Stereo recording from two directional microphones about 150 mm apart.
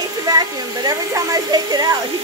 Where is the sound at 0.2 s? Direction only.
25° right (ahead or behind).